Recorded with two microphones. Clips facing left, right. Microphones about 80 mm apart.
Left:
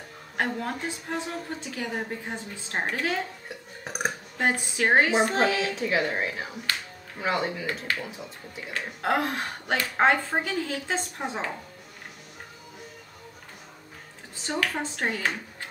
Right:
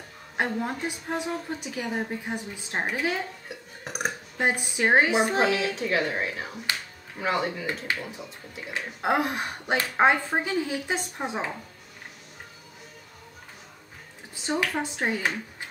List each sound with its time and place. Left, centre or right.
0.4 s a woman's voice: centre
3.8 s burping: centre
4.4 s a woman's voice: centre
5.8 s speech: centre
8.7 s a woman's voice: centre
14.4 s a woman's voice: centre